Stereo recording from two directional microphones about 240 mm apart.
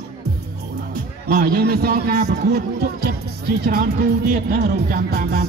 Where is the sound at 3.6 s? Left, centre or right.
Right.